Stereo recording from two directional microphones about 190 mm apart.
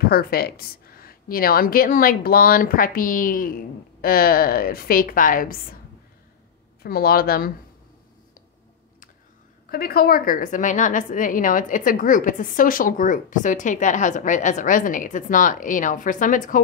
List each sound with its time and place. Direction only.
0.0 s a woman's voice: 55° left (ahead or behind)
6.8 s a woman's voice: 50° left (ahead or behind)
9.7 s a woman's voice: 55° left (ahead or behind)